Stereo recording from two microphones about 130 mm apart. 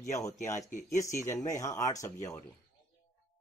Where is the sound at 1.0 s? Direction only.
20° left (ahead or behind).